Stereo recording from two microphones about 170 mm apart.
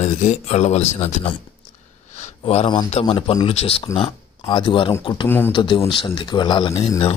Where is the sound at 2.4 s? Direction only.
30° left (ahead or behind).